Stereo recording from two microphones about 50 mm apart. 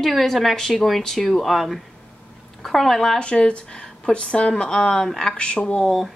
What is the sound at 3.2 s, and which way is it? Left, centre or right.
Speech, centre.